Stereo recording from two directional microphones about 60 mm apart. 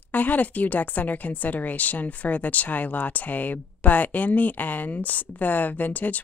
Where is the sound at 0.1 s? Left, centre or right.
Left.